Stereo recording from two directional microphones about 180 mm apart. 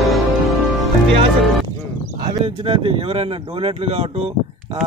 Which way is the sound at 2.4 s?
30° right (ahead or behind).